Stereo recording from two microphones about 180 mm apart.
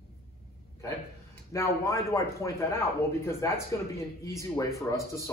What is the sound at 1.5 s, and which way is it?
Speech, 15° left (ahead or behind).